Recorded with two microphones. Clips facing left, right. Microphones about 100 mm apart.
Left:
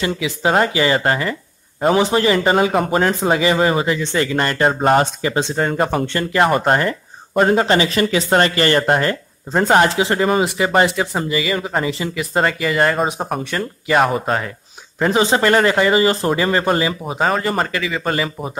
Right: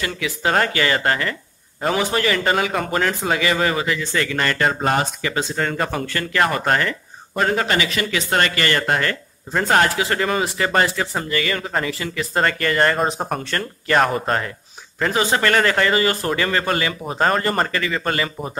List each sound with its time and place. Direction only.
0.0 s speech: 20° left (ahead or behind)
12.4 s speech: 5° left (ahead or behind)
15.0 s speech: 20° left (ahead or behind)
17.0 s speech: 5° left (ahead or behind)